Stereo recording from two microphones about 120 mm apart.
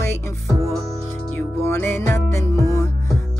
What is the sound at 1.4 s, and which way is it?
Music, 15° left (ahead or behind).